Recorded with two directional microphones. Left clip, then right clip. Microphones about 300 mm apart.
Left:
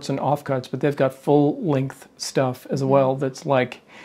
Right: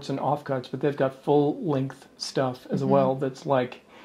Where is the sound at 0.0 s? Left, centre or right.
Left.